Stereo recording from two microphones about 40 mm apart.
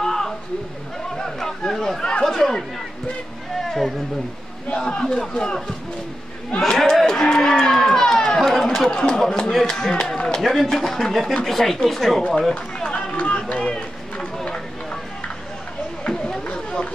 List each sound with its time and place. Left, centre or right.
0.0 s a sound: centre
1.1 s chatter: centre
2.2 s speech: centre
3.5 s a sound: centre
4.7 s speech: centre
6.7 s a sound: centre
7.2 s speech: centre
8.9 s speech: centre
9.5 s speech: centre
9.8 s speech: centre
12.9 s run: left
13.6 s run: left
16.1 s chatter: left